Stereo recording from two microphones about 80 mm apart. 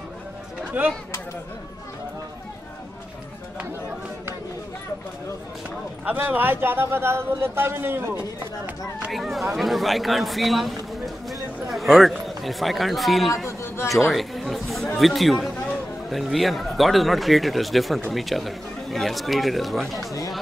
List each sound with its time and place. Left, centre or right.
0.7 s speech: centre
6.0 s a man's voice: right
9.1 s speech: centre
11.7 s speech: centre
13.5 s a sound: left
14.0 s chatter: centre
15.0 s a man's voice: centre